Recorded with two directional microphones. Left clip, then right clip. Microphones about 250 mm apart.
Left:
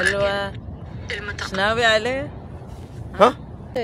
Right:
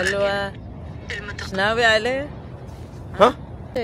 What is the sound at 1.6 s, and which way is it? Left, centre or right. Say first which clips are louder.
Speech: even; centre.